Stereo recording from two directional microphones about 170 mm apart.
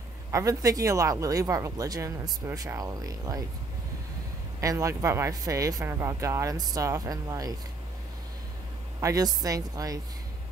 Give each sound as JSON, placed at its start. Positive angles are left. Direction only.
{"t": 0.3, "sound": "speech", "side_deg": -20}
{"t": 4.6, "sound": "speech", "side_deg": -20}
{"t": 9.0, "sound": "speech", "side_deg": -20}